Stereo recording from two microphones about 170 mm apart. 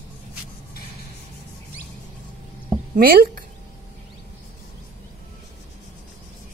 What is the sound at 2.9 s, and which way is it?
Speech, 60° right (ahead or behind).